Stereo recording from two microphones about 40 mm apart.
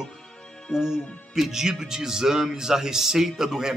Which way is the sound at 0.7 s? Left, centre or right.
Centre.